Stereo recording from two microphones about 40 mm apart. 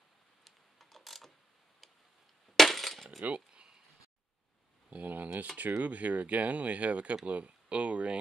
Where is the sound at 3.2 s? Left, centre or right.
Right.